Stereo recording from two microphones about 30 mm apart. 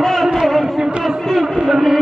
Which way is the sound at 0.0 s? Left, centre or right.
Centre.